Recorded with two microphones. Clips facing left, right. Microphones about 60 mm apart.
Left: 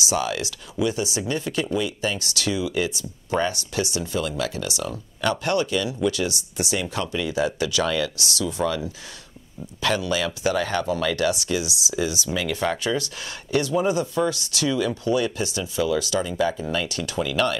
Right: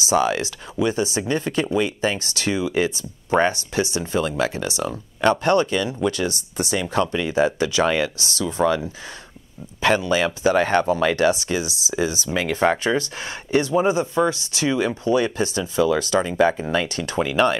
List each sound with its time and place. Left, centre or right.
0.0 s speech: right